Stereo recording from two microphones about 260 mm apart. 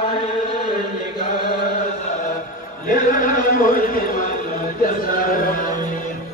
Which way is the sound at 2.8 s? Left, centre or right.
Left.